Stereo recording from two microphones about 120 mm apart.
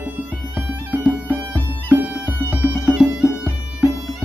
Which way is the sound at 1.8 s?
10° right (ahead or behind).